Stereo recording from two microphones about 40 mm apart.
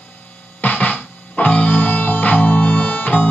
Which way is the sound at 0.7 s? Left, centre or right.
Left.